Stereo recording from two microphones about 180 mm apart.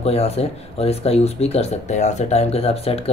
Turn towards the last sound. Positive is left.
turn(degrees=35)  # may be behind; listen again after turning